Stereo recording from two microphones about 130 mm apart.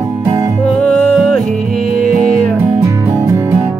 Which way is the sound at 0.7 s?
10° left (ahead or behind).